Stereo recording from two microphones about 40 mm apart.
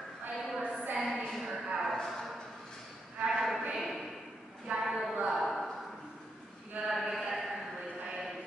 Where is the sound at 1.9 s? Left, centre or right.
Centre.